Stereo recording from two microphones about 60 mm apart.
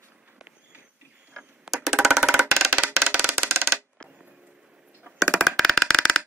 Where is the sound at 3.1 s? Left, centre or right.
Right.